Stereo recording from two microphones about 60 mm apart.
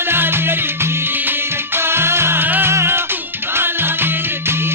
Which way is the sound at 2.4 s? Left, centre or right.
Right.